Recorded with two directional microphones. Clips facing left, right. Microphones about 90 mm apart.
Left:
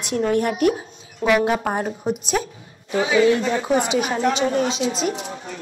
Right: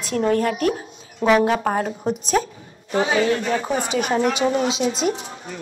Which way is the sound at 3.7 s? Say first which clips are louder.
Left 3 dB; 15° left (ahead or behind).